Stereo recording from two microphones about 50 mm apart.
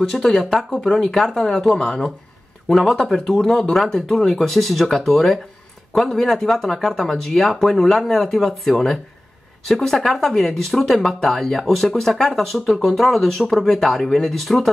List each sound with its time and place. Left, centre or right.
0.1 s speech: centre
0.7 s speech: left
0.9 s speech: centre